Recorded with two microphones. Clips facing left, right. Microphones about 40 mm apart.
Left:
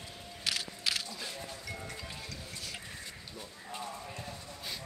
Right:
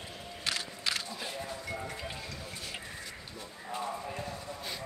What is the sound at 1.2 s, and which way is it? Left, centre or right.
Music, right.